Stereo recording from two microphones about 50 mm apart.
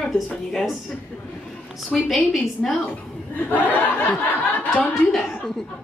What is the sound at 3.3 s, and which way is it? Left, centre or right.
Speech, left.